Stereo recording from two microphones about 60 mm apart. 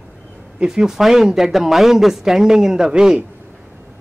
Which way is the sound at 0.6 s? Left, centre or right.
Centre.